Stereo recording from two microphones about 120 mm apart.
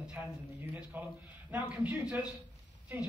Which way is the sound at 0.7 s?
15° right (ahead or behind).